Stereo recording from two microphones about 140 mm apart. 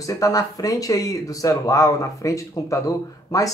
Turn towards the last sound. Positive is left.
turn(degrees=25)  # may be behind; listen again after turning